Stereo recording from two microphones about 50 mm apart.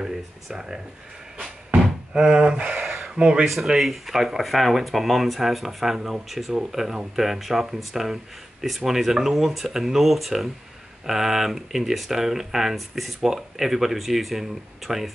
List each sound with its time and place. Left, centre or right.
0.0 s speech: centre
2.1 s speech: centre
2.8 s a sound: centre
3.2 s speech: centre
3.4 s speech: centre